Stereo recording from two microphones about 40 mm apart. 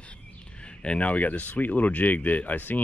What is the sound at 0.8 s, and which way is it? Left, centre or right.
Speech, left.